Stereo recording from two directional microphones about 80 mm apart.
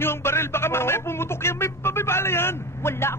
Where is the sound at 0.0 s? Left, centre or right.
Left.